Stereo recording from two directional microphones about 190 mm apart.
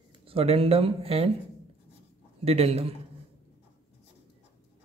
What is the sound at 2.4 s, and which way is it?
Speech, 30° right (ahead or behind).